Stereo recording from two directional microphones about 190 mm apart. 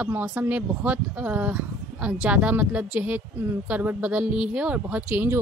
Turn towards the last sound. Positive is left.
turn(degrees=-10)  # may be behind; listen again after turning